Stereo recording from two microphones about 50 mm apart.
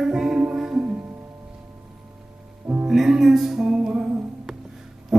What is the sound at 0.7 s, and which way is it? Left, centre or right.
Music, right.